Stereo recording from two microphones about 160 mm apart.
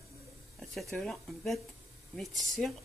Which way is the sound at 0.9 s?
Centre (ahead or behind).